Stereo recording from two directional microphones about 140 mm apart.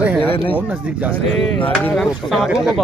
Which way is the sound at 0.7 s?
10° right (ahead or behind).